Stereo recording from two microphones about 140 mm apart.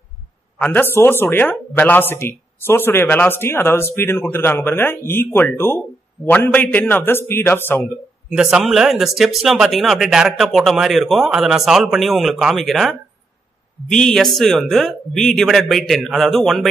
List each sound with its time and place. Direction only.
0.6 s speech: 15° left (ahead or behind)
8.4 s speech: 5° right (ahead or behind)